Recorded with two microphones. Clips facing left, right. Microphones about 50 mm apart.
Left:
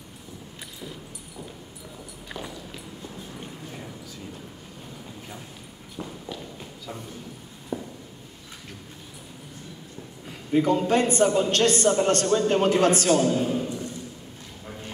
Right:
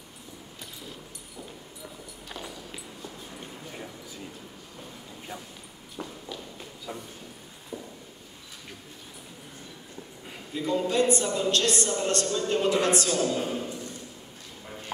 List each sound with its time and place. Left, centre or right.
6.0 s run: centre
7.7 s a sound: left
10.5 s a man's voice: left
13.4 s a man's voice: centre